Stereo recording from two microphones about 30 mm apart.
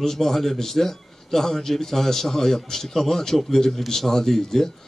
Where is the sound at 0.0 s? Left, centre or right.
Centre.